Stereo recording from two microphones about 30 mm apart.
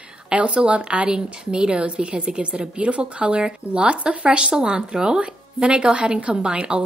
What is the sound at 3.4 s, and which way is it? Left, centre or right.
Speech, right.